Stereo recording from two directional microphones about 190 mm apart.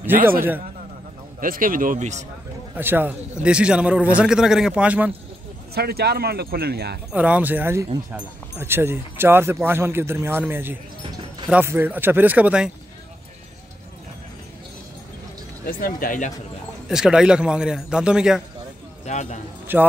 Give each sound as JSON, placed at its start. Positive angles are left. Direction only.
{"t": 1.4, "sound": "a man's voice", "side_deg": -45}
{"t": 2.7, "sound": "speech", "side_deg": -10}
{"t": 5.8, "sound": "speech", "side_deg": -55}
{"t": 7.1, "sound": "speech", "side_deg": -5}
{"t": 15.6, "sound": "speech", "side_deg": 50}
{"t": 16.9, "sound": "a man's voice", "side_deg": -5}
{"t": 19.0, "sound": "speech", "side_deg": 40}
{"t": 19.7, "sound": "speech", "side_deg": -10}